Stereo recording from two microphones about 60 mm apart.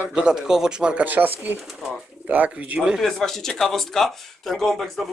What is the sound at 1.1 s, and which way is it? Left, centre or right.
Speech, right.